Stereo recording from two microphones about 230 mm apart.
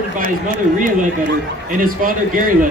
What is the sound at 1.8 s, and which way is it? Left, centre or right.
Speech, right.